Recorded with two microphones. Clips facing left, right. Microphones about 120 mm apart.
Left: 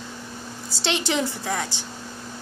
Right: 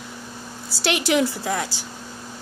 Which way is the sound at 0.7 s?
20° left (ahead or behind).